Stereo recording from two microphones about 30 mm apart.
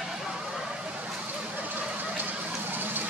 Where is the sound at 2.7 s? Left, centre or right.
Right.